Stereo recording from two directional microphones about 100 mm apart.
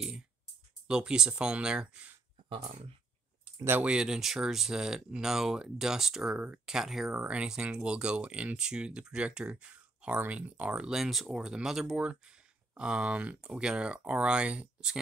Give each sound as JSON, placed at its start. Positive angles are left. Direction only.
{"t": 0.8, "sound": "speech", "side_deg": -5}
{"t": 2.5, "sound": "speech", "side_deg": -70}
{"t": 3.8, "sound": "speech", "side_deg": -10}